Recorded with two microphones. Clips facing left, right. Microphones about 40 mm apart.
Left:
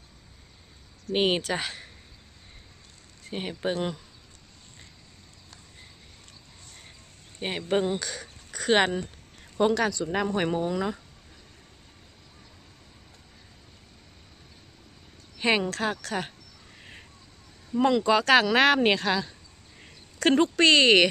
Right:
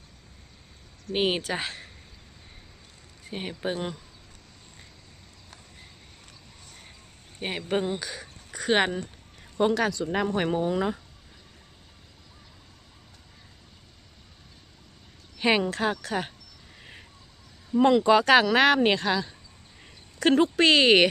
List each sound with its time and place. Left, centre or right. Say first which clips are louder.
1.1 s speech: left 1 dB; centre
1.4 s speech: left 1 dB; centre
3.3 s speech: left 1 dB; centre
7.4 s speech: left 2 dB; centre
8.0 s speech: left 1 dB; centre
10.7 s speech: right 2 dB; centre
15.3 s speech: right 1 dB; centre
17.6 s speech: right 3 dB; centre